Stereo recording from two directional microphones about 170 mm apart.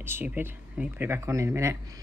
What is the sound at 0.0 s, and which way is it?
Speech, 10° right (ahead or behind).